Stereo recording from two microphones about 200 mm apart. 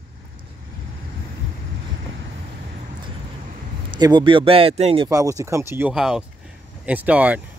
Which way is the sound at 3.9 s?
25° right (ahead or behind).